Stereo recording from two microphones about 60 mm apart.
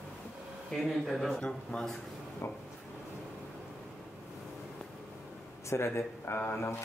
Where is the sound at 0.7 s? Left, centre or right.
Centre.